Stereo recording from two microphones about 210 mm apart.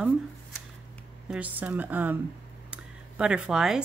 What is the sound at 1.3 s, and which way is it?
A woman's voice, 5° right (ahead or behind).